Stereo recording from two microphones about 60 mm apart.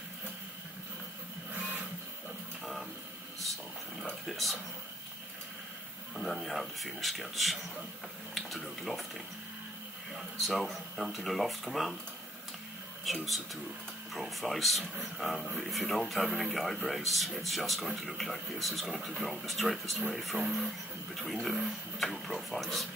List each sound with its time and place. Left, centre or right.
4.0 s a sound: centre
6.1 s speech: centre
10.1 s speech: centre
13.0 s speech: centre
20.3 s speech: right
21.2 s speech: centre